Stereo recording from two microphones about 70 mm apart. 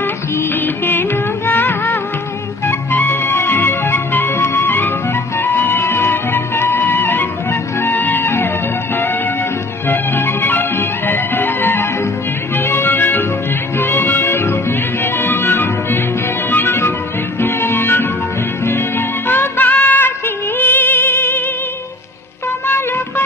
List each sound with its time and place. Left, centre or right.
0.4 s music: left
9.8 s music: left
22.7 s music: left